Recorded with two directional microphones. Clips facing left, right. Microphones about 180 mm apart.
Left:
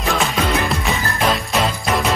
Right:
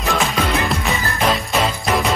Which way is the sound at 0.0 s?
Centre (ahead or behind).